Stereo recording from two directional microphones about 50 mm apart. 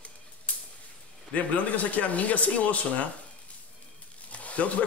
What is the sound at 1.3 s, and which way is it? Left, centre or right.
Speech, left.